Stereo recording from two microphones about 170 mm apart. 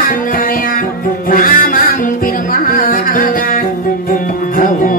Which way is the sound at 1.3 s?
55° left (ahead or behind).